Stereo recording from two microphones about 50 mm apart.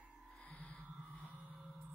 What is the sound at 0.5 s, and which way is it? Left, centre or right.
Music, left.